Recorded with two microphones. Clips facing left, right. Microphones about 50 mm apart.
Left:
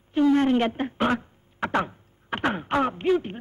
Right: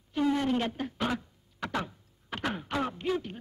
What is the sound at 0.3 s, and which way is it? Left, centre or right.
A man's voice, left.